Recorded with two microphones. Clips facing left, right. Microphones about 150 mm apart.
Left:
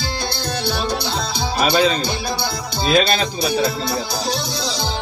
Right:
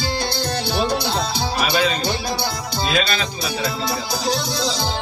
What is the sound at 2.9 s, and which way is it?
Speech, 35° left (ahead or behind).